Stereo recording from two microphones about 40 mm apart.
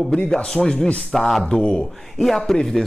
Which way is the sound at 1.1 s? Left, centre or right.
Centre.